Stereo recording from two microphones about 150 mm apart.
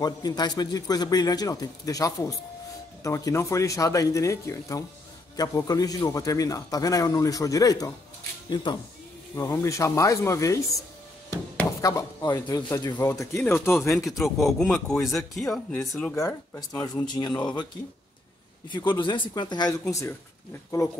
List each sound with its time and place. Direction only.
0.0 s a man's voice: 25° left (ahead or behind)
9.3 s a man's voice: 20° left (ahead or behind)
14.0 s speech: centre (ahead or behind)
17.4 s a man's voice: 30° left (ahead or behind)
18.7 s a man's voice: 30° left (ahead or behind)